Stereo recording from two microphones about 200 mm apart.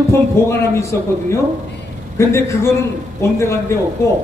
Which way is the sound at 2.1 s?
15° left (ahead or behind).